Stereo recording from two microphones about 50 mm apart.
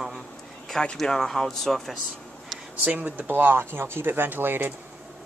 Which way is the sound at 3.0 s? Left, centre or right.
Right.